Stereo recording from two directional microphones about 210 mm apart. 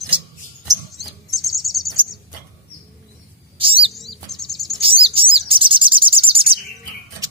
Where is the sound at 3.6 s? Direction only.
25° right (ahead or behind).